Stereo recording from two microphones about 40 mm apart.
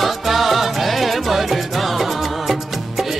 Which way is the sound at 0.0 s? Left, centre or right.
Centre.